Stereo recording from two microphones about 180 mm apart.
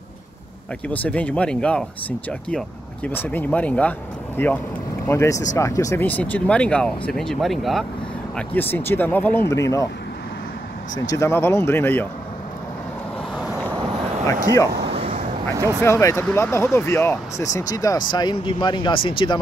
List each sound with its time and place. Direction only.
0.8 s speech: 10° left (ahead or behind)
8.4 s speech: 10° left (ahead or behind)
11.1 s speech: 15° left (ahead or behind)
14.2 s speech: 20° left (ahead or behind)
14.9 s a sound: 35° right (ahead or behind)
15.5 s speech: 15° right (ahead or behind)
15.8 s speech: 15° left (ahead or behind)